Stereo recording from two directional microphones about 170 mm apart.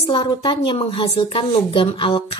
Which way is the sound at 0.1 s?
25° left (ahead or behind).